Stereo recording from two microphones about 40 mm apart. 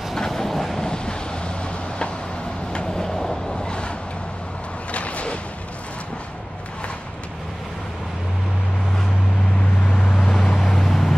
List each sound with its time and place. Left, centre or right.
0.1 s train: centre
0.8 s vehicle: left
3.6 s vehicle: left
4.9 s a sound: left
10.2 s vehicle: centre